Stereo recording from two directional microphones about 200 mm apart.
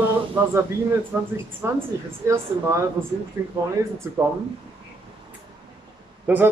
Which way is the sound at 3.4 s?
10° right (ahead or behind).